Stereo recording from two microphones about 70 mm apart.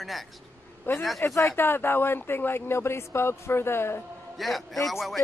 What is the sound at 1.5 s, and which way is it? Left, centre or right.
Speech, left.